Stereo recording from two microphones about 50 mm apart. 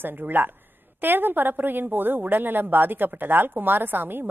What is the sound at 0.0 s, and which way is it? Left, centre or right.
A woman's voice, right.